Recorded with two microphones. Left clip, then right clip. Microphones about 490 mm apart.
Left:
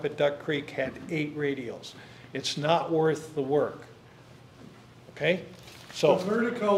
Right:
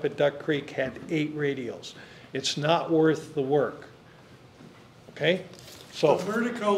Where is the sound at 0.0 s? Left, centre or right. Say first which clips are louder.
Right 2 dB; centre.